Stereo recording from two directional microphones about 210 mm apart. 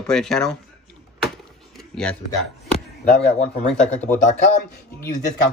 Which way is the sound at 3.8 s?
35° left (ahead or behind).